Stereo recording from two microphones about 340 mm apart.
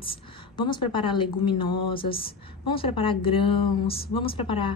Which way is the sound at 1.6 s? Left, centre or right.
Left.